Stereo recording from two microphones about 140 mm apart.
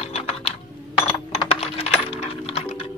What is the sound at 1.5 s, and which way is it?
Computer keyboard, 45° left (ahead or behind).